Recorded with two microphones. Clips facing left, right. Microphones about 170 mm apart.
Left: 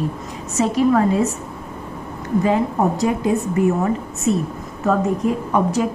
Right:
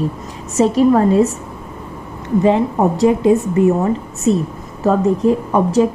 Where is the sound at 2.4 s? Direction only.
25° right (ahead or behind).